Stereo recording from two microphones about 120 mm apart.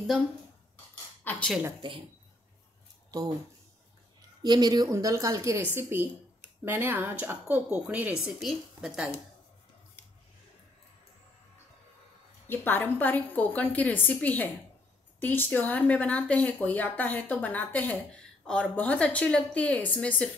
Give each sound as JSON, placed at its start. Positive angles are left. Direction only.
{"t": 1.3, "sound": "a woman's voice", "side_deg": 15}
{"t": 1.8, "sound": "speech", "side_deg": -45}
{"t": 3.1, "sound": "a woman's voice", "side_deg": -30}
{"t": 4.4, "sound": "a woman's voice", "side_deg": -35}
{"t": 12.4, "sound": "speech", "side_deg": 15}